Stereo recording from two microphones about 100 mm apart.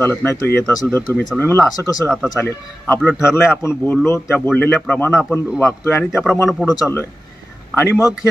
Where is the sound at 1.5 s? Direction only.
35° left (ahead or behind).